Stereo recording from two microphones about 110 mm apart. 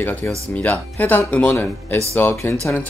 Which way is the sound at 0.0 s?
15° left (ahead or behind).